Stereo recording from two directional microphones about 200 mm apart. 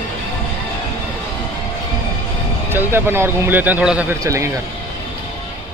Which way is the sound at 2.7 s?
10° right (ahead or behind).